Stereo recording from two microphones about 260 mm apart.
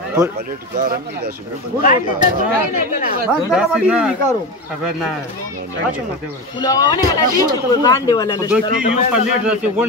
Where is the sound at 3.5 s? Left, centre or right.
Centre.